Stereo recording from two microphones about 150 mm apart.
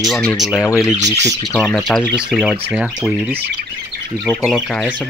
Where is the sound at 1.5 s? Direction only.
Centre (ahead or behind).